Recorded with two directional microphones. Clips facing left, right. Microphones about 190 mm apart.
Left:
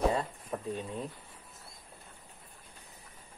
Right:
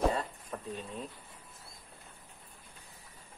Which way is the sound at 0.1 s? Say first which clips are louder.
Left 3 dB; 20° left (ahead or behind).